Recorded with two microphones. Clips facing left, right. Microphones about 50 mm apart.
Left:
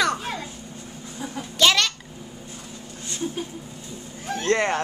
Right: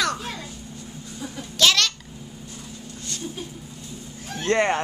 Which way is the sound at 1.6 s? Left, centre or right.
Centre.